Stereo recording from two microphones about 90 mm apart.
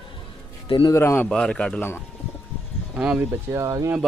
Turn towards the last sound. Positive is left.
turn(degrees=-40)  # may be behind; listen again after turning